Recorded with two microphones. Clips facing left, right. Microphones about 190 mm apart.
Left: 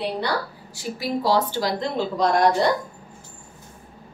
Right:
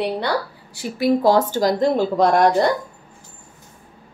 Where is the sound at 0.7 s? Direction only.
55° right (ahead or behind).